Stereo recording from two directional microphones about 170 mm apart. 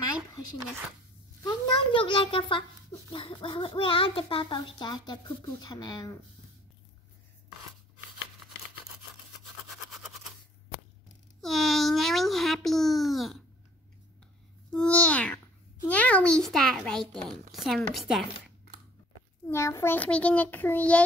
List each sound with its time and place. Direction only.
1.4 s a child's voice: 25° left (ahead or behind)
11.4 s a child's voice: centre (ahead or behind)
14.7 s a child's voice: 5° left (ahead or behind)
19.4 s a child's voice: 15° left (ahead or behind)